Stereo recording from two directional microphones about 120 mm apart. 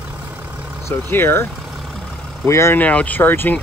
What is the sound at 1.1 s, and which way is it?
Speech, 20° left (ahead or behind).